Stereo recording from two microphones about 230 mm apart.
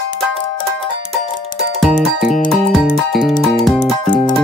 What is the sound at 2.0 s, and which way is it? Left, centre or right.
Music, centre.